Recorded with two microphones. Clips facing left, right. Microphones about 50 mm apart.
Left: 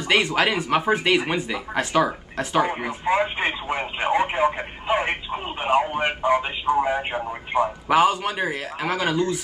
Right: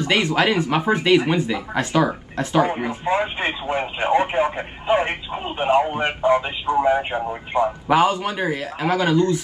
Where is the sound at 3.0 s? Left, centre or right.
Left.